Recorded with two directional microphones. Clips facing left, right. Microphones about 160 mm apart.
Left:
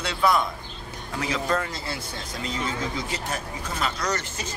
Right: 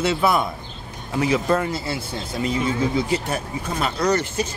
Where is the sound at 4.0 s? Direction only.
30° right (ahead or behind).